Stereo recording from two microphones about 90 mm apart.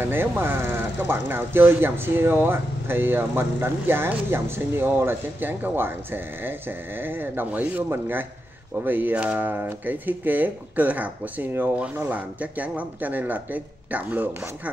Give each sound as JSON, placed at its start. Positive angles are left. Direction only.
{"t": 0.0, "sound": "speech", "side_deg": -25}